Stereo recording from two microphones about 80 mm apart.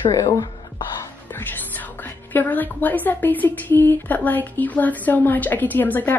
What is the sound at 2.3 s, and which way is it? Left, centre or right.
A woman's voice, left.